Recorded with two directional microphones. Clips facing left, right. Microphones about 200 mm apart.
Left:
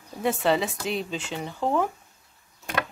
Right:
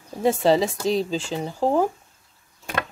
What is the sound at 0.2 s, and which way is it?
Speech, 35° right (ahead or behind).